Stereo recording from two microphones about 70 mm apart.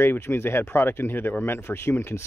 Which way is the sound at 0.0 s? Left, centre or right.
Left.